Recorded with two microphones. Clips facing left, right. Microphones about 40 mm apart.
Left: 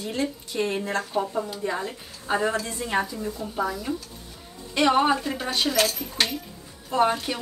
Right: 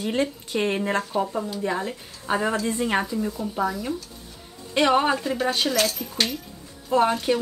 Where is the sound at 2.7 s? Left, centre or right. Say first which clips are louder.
Right 3 dB; right.